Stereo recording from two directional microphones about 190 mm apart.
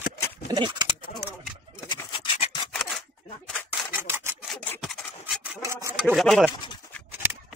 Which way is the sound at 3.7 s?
10° right (ahead or behind).